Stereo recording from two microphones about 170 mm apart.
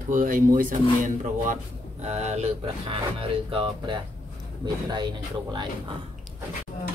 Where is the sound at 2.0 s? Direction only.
40° right (ahead or behind).